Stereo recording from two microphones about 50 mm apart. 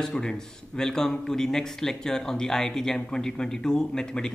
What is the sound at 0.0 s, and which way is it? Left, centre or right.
A man's voice, centre.